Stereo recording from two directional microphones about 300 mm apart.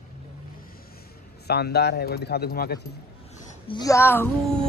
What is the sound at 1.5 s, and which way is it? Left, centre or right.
Speech, left.